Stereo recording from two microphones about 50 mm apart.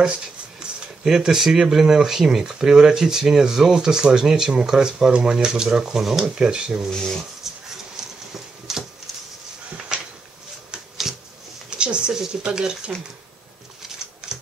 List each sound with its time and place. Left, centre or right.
0.6 s a sound: centre
1.0 s speech: centre
6.3 s speech: centre
6.9 s speech: centre
7.5 s dog: centre
8.7 s a sound: centre
9.9 s a sound: centre
11.8 s speech: centre
13.8 s scissors: centre
14.3 s typing: centre